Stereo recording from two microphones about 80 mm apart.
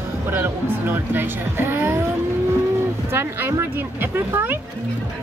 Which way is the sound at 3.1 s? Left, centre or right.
Right.